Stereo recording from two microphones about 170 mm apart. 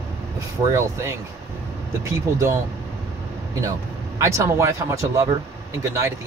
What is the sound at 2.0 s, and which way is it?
Speech, 15° right (ahead or behind).